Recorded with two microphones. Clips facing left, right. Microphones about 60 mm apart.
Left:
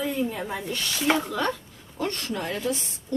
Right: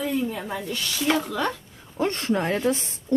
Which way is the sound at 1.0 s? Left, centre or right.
Centre.